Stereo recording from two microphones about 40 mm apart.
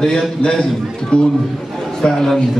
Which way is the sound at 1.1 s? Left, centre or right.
Left.